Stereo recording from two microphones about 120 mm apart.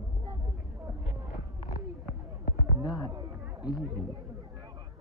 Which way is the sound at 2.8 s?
35° left (ahead or behind).